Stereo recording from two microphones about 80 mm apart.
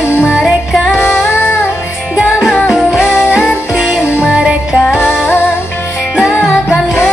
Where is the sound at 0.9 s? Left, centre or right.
Left.